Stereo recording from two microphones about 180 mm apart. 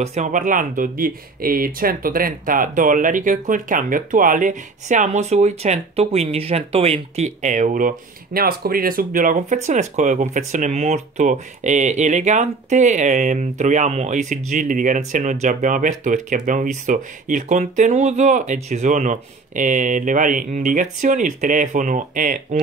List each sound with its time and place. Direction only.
0.0 s speech: 40° right (ahead or behind)